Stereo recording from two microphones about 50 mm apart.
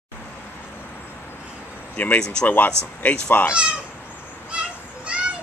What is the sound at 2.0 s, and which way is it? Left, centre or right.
Speech, left.